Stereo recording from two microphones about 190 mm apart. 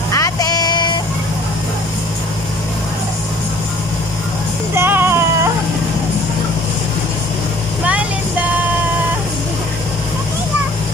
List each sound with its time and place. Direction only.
0.1 s a sound: 20° left (ahead or behind)
4.7 s music: 10° right (ahead or behind)
7.8 s vehicle: 5° right (ahead or behind)